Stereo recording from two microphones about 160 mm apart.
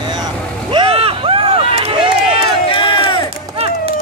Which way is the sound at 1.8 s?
35° right (ahead or behind).